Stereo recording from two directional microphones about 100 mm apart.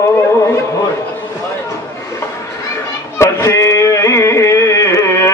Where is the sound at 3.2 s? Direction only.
30° left (ahead or behind).